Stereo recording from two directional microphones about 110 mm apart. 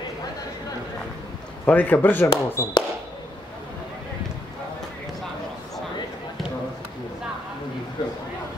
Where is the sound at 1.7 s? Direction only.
15° left (ahead or behind).